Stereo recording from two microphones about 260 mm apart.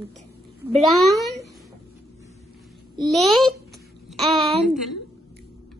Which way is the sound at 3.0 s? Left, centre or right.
Centre.